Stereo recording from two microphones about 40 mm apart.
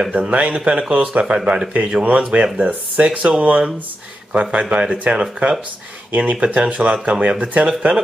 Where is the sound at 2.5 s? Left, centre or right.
Right.